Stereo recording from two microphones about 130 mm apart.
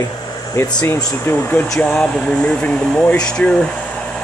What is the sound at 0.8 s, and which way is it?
Speech, 20° left (ahead or behind).